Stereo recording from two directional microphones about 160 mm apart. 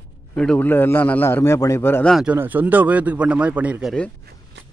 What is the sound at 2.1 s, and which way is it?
Speech, 5° right (ahead or behind).